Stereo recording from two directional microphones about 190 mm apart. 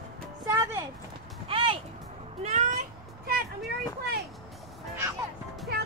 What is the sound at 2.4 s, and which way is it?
Speech, 35° right (ahead or behind).